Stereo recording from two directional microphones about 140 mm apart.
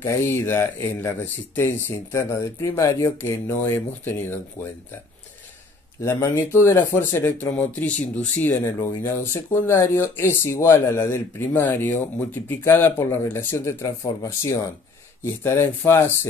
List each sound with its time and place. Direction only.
0.0 s speech: 20° left (ahead or behind)
5.9 s speech: 20° left (ahead or behind)